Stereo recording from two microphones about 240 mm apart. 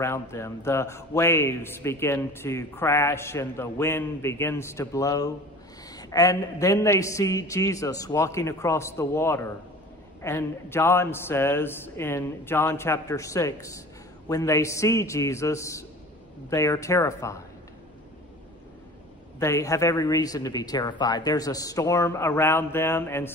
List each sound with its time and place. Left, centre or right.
0.0 s a man's voice: centre
19.4 s a man's voice: centre